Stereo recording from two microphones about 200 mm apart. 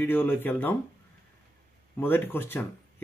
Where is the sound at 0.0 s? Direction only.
10° left (ahead or behind).